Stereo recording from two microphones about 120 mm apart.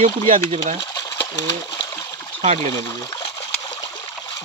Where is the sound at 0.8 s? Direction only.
35° left (ahead or behind).